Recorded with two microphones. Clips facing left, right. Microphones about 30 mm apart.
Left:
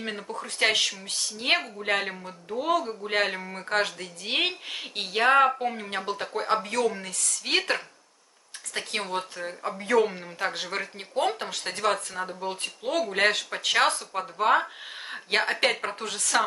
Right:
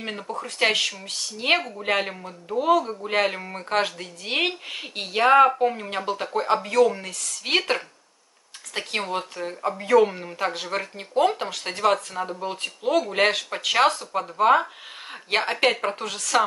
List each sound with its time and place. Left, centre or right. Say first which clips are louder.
0.4 s speech: right 2 dB; centre